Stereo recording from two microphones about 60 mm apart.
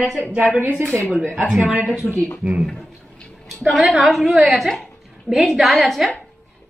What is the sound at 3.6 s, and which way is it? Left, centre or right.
A woman's voice, centre.